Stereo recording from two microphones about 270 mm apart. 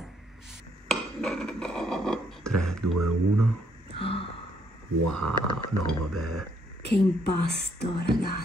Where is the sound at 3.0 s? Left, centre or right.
Right.